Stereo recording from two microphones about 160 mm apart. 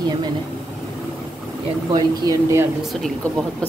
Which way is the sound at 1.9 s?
20° right (ahead or behind).